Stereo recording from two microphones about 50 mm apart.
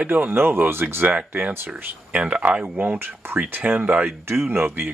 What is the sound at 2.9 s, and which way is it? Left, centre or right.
Speech, right.